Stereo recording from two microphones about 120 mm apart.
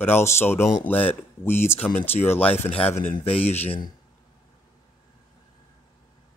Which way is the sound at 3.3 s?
55° left (ahead or behind).